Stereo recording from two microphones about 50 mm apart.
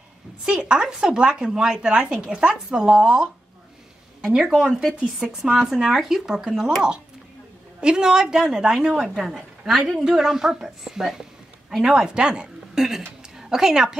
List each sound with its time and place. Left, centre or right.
0.5 s speech: right
4.6 s speech: centre
7.8 s speech: centre
10.0 s a woman's voice: centre